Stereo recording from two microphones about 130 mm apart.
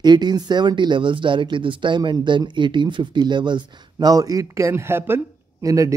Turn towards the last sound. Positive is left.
turn(degrees=-25)  # may be behind; listen again after turning